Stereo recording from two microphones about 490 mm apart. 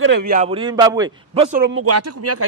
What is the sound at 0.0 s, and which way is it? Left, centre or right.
A man's voice, centre.